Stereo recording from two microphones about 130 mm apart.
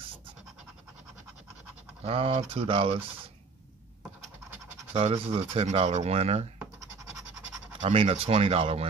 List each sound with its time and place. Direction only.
2.0 s speech: 50° right (ahead or behind)
4.9 s speech: 50° right (ahead or behind)
7.8 s speech: 45° right (ahead or behind)